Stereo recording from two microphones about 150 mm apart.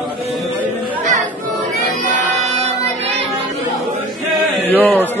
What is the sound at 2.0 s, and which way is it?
Music, 50° right (ahead or behind).